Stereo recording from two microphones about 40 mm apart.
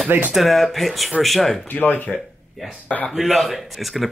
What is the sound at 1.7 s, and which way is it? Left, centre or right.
Speech, left.